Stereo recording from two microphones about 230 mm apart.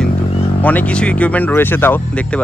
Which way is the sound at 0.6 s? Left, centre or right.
Centre.